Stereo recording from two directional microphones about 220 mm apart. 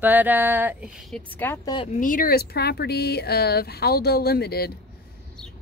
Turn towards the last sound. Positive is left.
turn(degrees=45)  # may be behind; listen again after turning